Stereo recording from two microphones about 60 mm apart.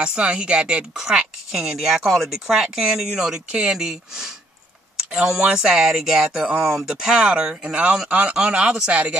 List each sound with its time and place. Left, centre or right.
0.0 s speech: centre